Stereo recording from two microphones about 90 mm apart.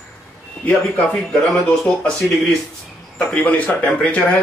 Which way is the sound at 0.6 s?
10° left (ahead or behind).